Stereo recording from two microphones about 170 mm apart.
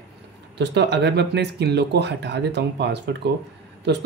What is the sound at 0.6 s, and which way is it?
Speech, 90° right.